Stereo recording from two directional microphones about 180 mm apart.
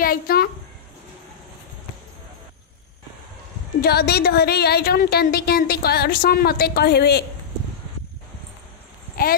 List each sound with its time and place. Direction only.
0.0 s a child's voice: 55° left (ahead or behind)
3.8 s a woman's voice: 65° left (ahead or behind)
9.2 s speech: 55° left (ahead or behind)